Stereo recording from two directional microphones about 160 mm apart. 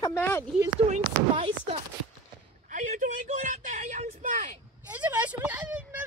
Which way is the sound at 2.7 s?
50° right (ahead or behind).